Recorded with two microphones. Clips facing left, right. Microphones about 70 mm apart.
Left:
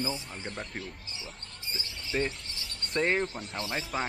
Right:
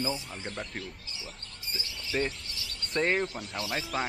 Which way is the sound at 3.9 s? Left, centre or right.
Centre.